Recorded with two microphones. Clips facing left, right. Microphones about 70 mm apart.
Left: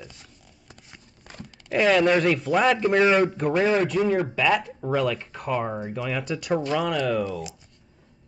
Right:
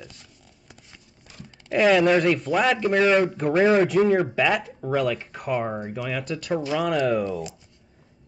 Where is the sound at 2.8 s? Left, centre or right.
Centre.